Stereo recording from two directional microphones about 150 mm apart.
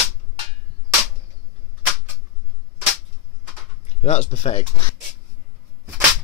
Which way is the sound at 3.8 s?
45° left (ahead or behind).